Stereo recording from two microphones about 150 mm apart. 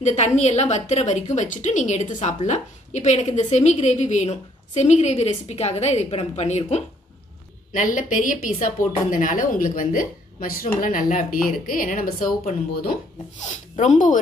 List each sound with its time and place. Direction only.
0.0 s a woman's voice: 50° left (ahead or behind)
7.7 s a woman's voice: 60° left (ahead or behind)
13.4 s a woman's voice: 55° left (ahead or behind)